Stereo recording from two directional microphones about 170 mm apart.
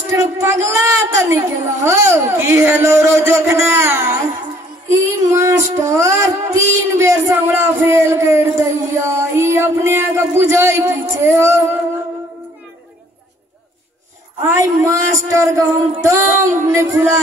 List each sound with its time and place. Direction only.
0.1 s a sound: 15° right (ahead or behind)
1.9 s speech: 15° right (ahead or behind)
4.8 s child singing: 15° right (ahead or behind)
14.4 s speech: 20° right (ahead or behind)